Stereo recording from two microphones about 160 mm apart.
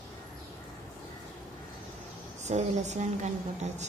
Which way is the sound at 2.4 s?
45° right (ahead or behind).